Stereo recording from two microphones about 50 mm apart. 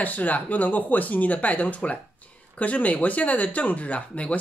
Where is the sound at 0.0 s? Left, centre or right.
Left.